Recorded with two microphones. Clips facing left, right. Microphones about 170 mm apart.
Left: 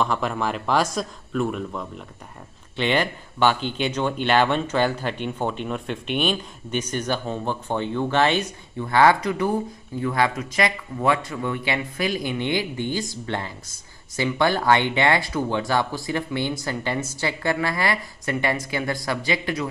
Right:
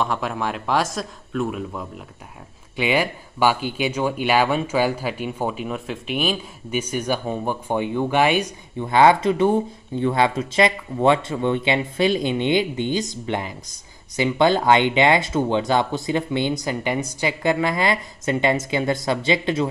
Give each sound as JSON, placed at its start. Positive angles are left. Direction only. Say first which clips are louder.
{"t": 0.0, "sound": "a man's voice", "louder": "even", "side_deg": 0}